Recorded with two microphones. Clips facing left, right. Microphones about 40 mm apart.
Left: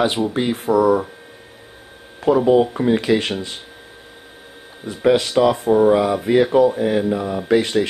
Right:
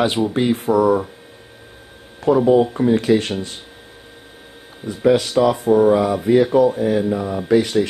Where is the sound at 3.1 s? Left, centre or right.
Left.